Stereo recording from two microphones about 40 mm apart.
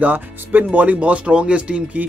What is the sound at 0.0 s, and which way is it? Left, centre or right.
Speech, right.